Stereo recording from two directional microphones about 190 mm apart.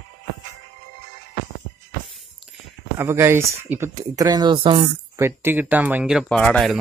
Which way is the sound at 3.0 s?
15° right (ahead or behind).